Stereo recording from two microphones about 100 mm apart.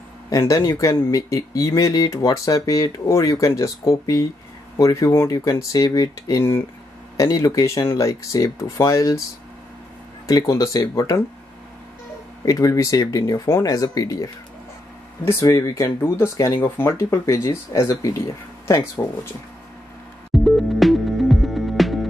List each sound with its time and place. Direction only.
0.3 s speech: 30° left (ahead or behind)
10.2 s speech: 35° left (ahead or behind)
12.4 s speech: 35° left (ahead or behind)
15.4 s speech: 35° left (ahead or behind)
20.4 s music: centre (ahead or behind)